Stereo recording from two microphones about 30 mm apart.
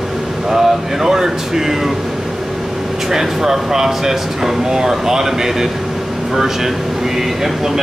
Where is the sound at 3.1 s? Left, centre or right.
Centre.